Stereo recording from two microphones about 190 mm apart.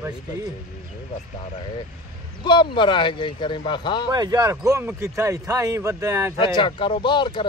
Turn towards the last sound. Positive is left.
turn(degrees=25)  # may be behind; listen again after turning